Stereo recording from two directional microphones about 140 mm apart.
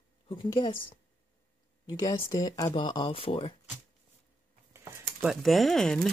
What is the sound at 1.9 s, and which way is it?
Speech, 25° left (ahead or behind).